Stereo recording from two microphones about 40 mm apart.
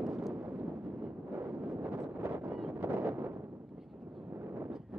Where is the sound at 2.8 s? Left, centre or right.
Right.